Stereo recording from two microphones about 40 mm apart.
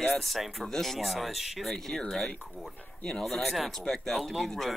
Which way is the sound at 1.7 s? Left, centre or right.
Centre.